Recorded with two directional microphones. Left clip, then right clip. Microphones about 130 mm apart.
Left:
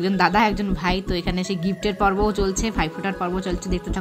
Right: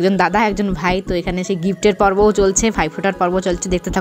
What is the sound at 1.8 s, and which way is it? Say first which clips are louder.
A woman's voice: right 8 dB; 50° right (ahead or behind).